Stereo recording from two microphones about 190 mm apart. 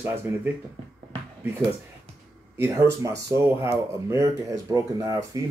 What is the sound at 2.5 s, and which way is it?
Speech, 15° right (ahead or behind).